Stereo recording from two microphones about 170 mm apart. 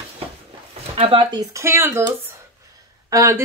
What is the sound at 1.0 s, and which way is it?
Speech, 30° right (ahead or behind).